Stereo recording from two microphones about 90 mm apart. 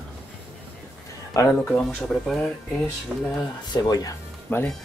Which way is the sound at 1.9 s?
5° left (ahead or behind).